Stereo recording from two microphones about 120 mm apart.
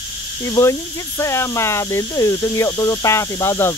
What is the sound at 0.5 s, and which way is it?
Speech, 25° left (ahead or behind).